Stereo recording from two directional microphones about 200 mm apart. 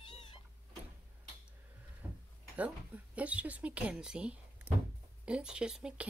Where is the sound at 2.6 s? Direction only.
5° right (ahead or behind).